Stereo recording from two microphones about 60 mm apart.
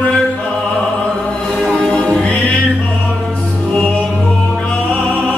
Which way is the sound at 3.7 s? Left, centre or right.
Centre.